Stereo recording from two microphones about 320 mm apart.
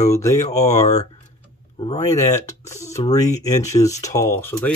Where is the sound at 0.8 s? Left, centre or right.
Left.